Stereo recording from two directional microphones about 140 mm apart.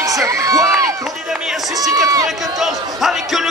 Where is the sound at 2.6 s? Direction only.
Centre (ahead or behind).